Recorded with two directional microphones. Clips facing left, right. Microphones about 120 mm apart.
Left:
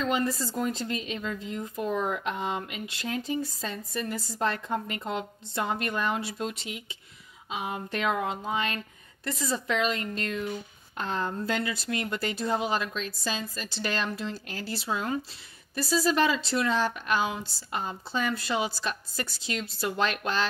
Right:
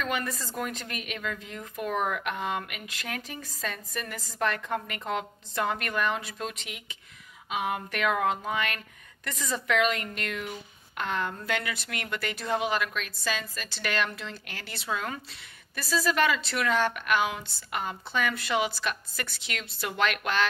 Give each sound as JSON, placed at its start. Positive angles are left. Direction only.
{"t": 0.0, "sound": "a woman's voice", "side_deg": 25}